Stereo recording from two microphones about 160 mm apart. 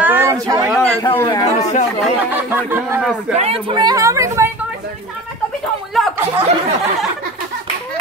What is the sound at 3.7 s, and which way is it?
Speech, 25° right (ahead or behind).